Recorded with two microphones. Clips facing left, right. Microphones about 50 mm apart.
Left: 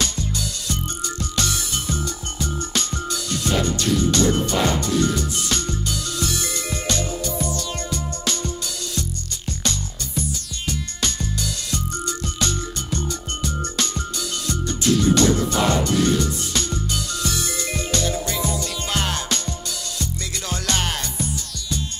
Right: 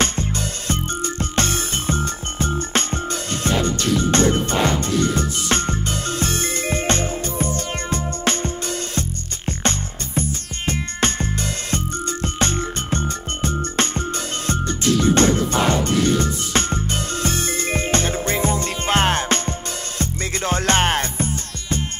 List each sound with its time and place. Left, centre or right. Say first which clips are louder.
0.0 s music: right 4 dB; right